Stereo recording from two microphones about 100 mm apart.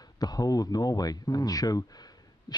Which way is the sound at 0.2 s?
40° left (ahead or behind).